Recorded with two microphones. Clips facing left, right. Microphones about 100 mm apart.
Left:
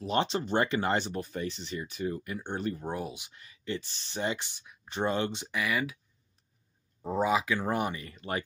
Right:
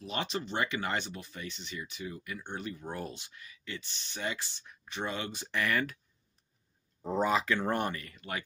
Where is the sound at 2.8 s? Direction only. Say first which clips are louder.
Left 4 dB; 15° left (ahead or behind).